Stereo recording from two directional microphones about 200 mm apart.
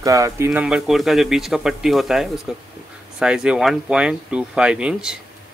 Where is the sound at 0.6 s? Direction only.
Centre (ahead or behind).